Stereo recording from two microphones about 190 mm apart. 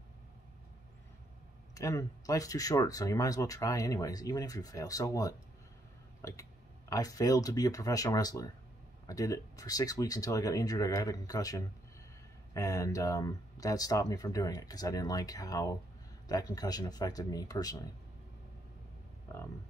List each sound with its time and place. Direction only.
1.8 s speech: 15° left (ahead or behind)